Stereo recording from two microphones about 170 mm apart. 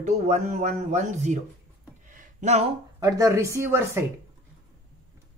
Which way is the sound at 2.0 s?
45° right (ahead or behind).